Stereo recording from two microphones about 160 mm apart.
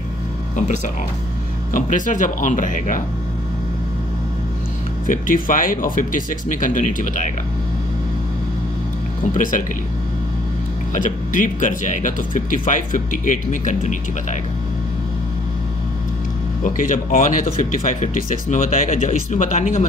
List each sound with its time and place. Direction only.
1.7 s speech: 55° left (ahead or behind)
5.0 s speech: 60° left (ahead or behind)
9.3 s speech: 55° left (ahead or behind)
10.9 s speech: 55° left (ahead or behind)
16.6 s speech: 55° left (ahead or behind)